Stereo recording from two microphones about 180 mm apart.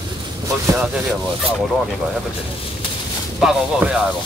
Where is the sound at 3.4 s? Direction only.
5° right (ahead or behind).